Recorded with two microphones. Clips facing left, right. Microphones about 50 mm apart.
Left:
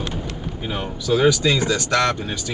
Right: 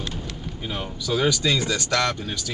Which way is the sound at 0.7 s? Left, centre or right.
Centre.